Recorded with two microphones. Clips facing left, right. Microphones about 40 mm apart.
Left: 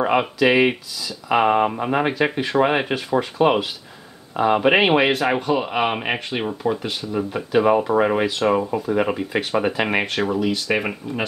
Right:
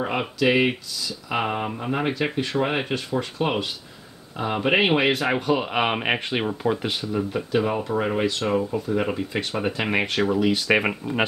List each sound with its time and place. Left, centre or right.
0.0 s a sound: left
0.4 s speech: centre
7.1 s speech: centre
8.0 s speech: centre
10.5 s speech: centre